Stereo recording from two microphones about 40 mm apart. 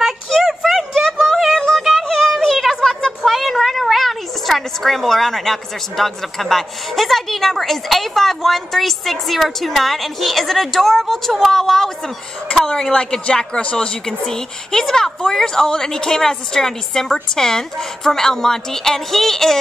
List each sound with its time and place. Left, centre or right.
0.4 s a sound: centre
3.3 s speech: centre
12.9 s a woman's voice: centre